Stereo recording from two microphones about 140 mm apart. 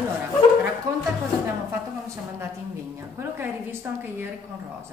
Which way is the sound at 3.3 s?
15° right (ahead or behind).